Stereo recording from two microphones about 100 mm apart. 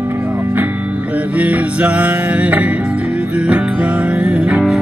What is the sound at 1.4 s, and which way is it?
Music, 15° right (ahead or behind).